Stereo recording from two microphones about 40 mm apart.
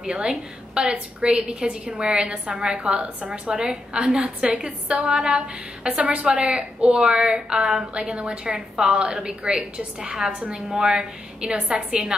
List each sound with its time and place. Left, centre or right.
0.0 s a woman's voice: right
5.9 s a woman's voice: right
8.5 s a woman's voice: centre